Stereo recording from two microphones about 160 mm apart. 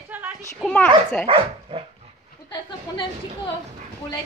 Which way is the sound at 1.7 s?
35° right (ahead or behind).